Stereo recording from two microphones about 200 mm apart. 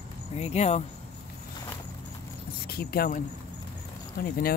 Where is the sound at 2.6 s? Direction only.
50° left (ahead or behind).